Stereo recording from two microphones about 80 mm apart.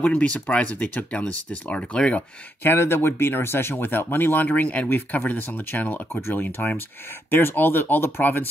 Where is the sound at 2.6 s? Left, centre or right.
Left.